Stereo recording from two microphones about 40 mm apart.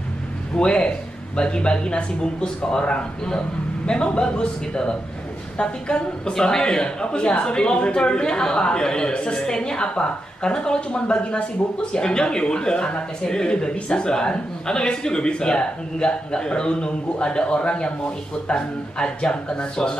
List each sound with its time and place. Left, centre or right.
0.6 s speech: left